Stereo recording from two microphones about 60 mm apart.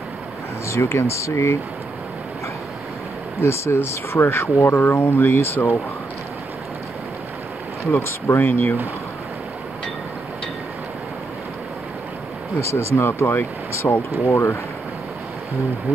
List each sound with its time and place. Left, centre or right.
0.8 s speech: left
3.4 s speech: left
7.8 s speech: left
12.5 s speech: left
14.2 s speech: left